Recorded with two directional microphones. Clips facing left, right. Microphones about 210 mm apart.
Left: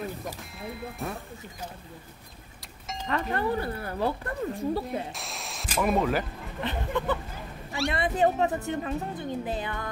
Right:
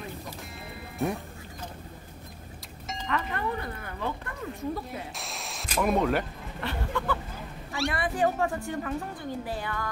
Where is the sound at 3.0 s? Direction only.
35° left (ahead or behind).